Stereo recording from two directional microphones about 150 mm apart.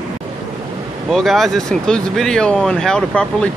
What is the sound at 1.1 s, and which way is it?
Speech, centre (ahead or behind).